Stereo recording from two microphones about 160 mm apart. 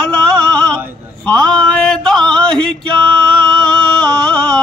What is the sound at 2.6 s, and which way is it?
Male singing, 30° right (ahead or behind).